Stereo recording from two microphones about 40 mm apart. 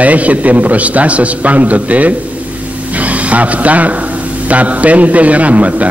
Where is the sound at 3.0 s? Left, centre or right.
Right.